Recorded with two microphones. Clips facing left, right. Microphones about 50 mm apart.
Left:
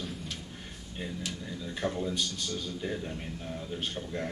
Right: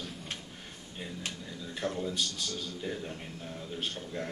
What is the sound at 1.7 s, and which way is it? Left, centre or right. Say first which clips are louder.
A man's voice: left 1 dB; centre.